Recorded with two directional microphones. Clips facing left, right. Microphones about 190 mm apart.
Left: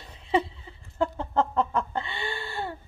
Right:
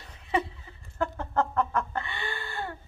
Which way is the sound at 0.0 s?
20° left (ahead or behind).